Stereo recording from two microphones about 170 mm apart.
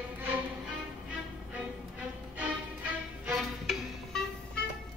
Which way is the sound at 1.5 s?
10° right (ahead or behind).